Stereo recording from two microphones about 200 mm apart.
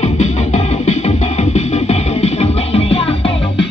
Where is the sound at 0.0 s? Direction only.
35° left (ahead or behind).